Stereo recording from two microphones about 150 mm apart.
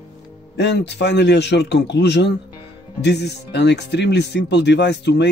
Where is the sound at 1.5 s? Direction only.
90° left.